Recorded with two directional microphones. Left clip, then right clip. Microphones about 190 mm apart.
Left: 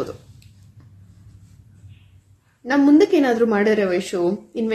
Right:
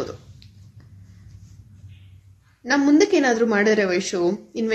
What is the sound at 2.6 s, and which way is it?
A woman's voice, centre (ahead or behind).